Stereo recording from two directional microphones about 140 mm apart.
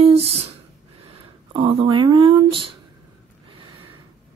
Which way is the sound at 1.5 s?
40° right (ahead or behind).